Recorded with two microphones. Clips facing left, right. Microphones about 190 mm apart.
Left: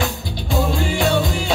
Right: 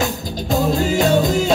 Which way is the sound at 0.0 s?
40° right (ahead or behind).